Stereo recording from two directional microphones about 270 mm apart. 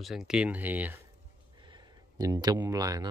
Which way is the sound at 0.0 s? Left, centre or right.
Centre.